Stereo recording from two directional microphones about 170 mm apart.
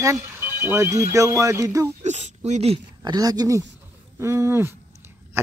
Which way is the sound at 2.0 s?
45° right (ahead or behind).